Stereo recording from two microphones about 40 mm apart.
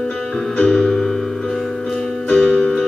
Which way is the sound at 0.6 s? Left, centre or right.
Left.